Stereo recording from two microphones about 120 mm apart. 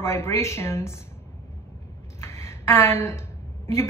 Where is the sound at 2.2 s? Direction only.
20° left (ahead or behind).